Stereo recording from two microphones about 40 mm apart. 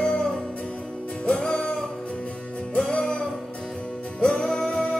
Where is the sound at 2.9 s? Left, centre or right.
Left.